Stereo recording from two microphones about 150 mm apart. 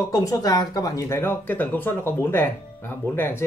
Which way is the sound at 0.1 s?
25° left (ahead or behind).